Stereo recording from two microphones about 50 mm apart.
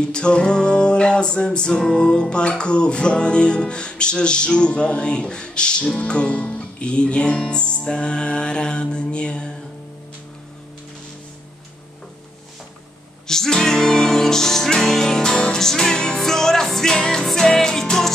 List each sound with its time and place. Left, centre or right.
0.0 s music: centre
13.3 s music: centre